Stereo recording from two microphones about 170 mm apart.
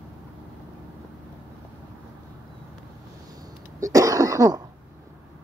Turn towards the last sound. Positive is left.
turn(degrees=-20)  # may be behind; listen again after turning